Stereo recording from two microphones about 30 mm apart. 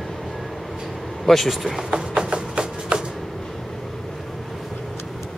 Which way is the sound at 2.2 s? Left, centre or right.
Right.